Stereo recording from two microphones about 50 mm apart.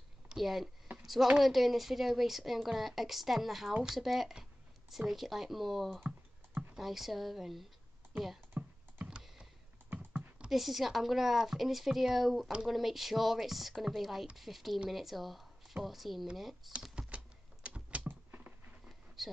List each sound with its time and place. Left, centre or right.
0.4 s a woman's voice: centre
0.9 s a sound: centre
1.4 s a woman's voice: centre
6.0 s computer keyboard: right
6.8 s a woman's voice: centre
8.6 s computer keyboard: right
10.5 s a woman's voice: centre
17.0 s typing: centre
18.0 s a sound: right
18.9 s a sound: centre